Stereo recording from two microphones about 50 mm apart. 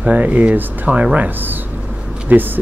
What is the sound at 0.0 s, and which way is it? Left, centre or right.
Speech, right.